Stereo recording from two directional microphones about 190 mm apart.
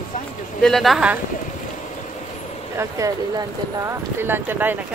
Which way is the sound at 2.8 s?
15° right (ahead or behind).